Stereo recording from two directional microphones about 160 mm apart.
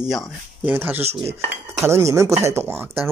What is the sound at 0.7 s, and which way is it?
Speech, 10° right (ahead or behind).